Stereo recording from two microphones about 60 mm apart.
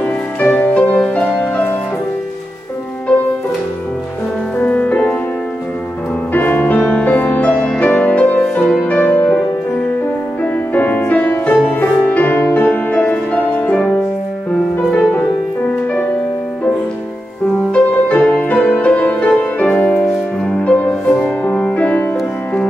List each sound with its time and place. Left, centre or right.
0.0 s music: left
4.6 s music: left
6.3 s music: left
10.4 s music: left
14.9 s music: left
17.6 s music: left
19.9 s music: centre
21.2 s music: left